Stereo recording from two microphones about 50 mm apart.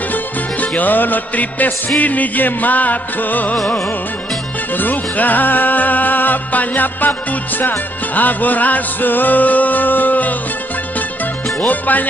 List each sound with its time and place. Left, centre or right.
0.1 s music: left
4.7 s music: left
11.6 s music: left